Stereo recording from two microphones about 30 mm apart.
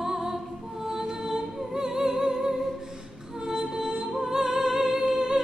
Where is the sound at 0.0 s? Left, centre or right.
Centre.